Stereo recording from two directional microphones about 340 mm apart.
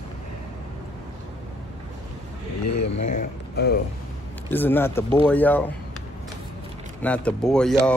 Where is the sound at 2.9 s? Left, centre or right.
Left.